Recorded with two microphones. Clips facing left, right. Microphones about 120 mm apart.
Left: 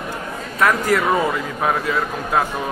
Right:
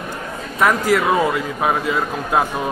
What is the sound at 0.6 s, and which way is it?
A man's voice, 5° right (ahead or behind).